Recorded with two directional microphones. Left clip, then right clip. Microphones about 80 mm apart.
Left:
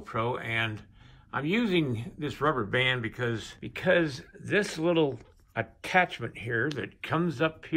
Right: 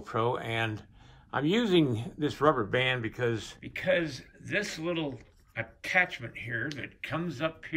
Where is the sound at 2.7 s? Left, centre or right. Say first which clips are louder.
Left 1 dB; right.